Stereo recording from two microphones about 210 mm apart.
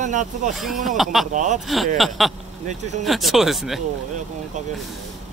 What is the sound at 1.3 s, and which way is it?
Speech, 35° right (ahead or behind).